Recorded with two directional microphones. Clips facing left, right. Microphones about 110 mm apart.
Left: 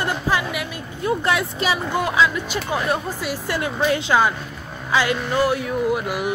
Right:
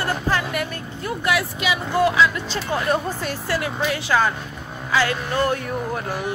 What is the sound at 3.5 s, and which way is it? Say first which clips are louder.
Speech: left 3 dB; 25° left (ahead or behind).